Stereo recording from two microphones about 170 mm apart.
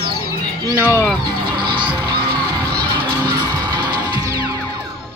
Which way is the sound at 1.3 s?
25° right (ahead or behind).